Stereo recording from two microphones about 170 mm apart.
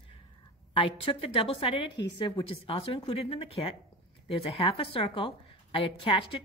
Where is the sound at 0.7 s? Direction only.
30° left (ahead or behind).